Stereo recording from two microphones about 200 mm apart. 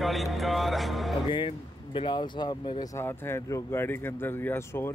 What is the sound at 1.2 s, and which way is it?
Music, 25° left (ahead or behind).